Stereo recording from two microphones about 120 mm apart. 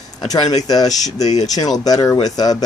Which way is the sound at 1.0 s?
75° left (ahead or behind).